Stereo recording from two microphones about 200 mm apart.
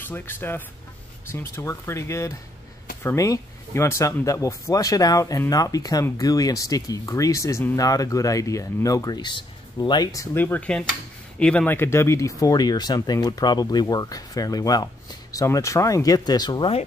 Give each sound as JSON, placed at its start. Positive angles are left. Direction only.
{"t": 0.0, "sound": "speech", "side_deg": 10}